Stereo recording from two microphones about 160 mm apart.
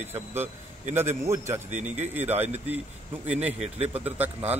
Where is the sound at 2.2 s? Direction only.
10° right (ahead or behind).